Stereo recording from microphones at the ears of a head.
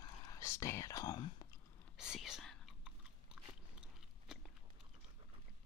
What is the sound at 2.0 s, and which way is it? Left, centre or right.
Chewing, left.